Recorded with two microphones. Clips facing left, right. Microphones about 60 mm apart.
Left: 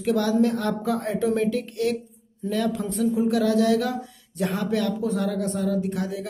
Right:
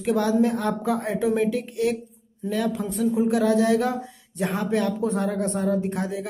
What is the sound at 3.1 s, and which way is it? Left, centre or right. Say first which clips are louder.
Speech: right 1 dB; right.